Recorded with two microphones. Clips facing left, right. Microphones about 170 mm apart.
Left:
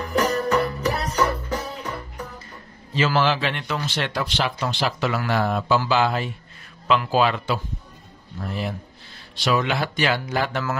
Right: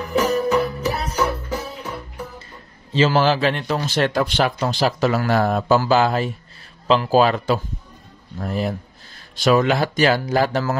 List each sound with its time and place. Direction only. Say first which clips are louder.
0.0 s music: right 3 dB; 5° right (ahead or behind)
2.9 s speech: right 4 dB; 30° right (ahead or behind)